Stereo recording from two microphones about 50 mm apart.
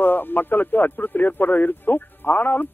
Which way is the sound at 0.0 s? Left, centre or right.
Left.